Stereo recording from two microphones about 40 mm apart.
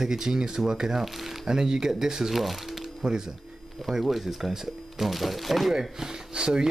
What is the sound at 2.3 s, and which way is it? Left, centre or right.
Music, centre.